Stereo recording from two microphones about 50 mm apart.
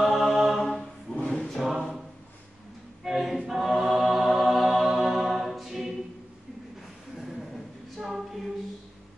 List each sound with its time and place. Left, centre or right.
0.0 s mantra: centre
1.1 s choir: centre
1.4 s choir: centre
3.0 s a capella: centre
7.2 s a sound: centre